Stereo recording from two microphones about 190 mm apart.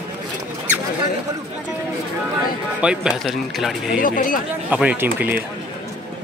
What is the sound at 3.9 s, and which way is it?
Speech, 45° left (ahead or behind).